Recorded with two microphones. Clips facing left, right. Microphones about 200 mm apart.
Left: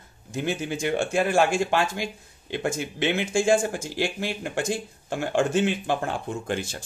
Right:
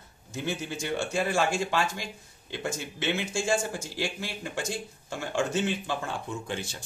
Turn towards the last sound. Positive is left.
turn(degrees=60)  # may be behind; listen again after turning